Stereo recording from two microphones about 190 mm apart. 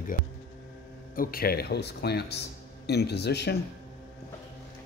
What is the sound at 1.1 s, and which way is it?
Speech, 50° left (ahead or behind).